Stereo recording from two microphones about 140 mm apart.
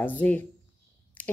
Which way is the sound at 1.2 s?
10° left (ahead or behind).